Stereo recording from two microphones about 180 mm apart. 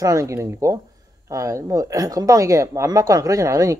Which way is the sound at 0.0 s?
15° right (ahead or behind).